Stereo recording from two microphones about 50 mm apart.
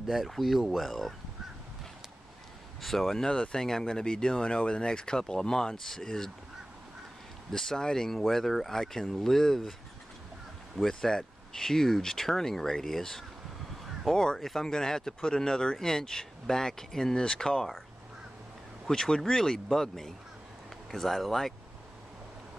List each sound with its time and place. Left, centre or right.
0.0 s speech: centre
2.8 s speech: centre
7.5 s speech: centre
10.8 s speech: centre
18.9 s speech: centre